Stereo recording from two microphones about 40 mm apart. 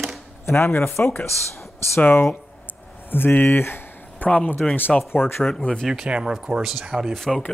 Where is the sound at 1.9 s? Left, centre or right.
Left.